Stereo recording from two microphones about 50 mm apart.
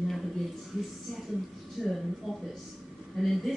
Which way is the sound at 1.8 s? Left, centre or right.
Centre.